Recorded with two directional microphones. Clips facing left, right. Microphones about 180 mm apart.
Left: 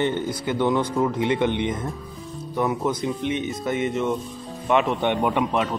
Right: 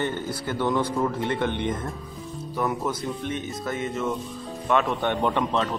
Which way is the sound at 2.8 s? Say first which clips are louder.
Left 4 dB; 15° left (ahead or behind).